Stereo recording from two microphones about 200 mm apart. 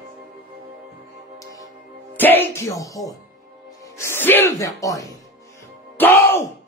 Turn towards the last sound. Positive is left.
turn(degrees=10)  # may be behind; listen again after turning